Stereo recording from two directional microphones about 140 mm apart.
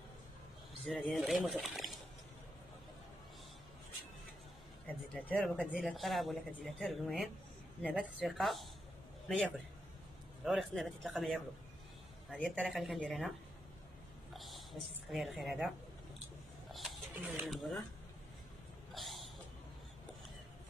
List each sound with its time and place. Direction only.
0.8 s speech: centre (ahead or behind)
4.8 s speech: 5° left (ahead or behind)
10.4 s speech: centre (ahead or behind)
14.3 s a woman's voice: centre (ahead or behind)
16.7 s a sound: centre (ahead or behind)
17.3 s speech: centre (ahead or behind)
18.9 s a sound: centre (ahead or behind)